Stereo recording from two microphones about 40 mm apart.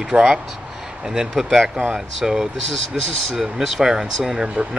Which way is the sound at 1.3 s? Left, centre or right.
Centre.